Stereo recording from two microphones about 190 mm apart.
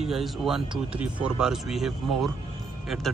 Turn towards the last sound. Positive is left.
turn(degrees=0)  # may be behind; listen again after turning